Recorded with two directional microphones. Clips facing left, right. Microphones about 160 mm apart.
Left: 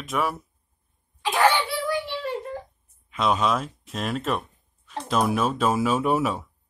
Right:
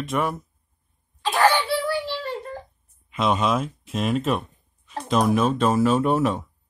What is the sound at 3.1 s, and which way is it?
Speech, centre (ahead or behind).